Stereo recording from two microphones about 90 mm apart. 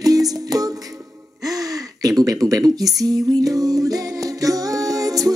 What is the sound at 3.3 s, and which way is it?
Music, 40° right (ahead or behind).